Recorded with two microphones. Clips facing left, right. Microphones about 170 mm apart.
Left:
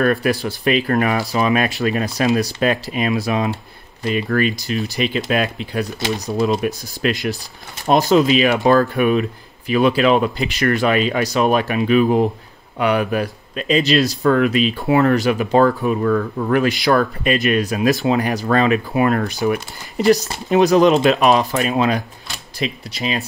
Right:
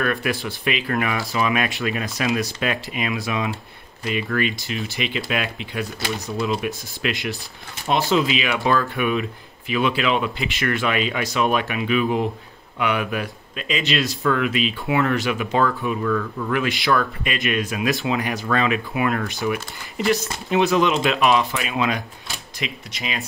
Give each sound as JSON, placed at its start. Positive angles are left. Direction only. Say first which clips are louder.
{"t": 0.0, "sound": "speech", "louder": "left 6 dB", "side_deg": 40}